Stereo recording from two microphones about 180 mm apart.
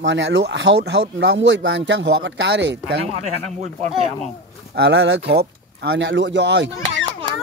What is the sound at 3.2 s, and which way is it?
Speech, 40° right (ahead or behind).